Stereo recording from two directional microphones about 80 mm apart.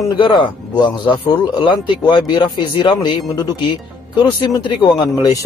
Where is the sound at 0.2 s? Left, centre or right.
Left.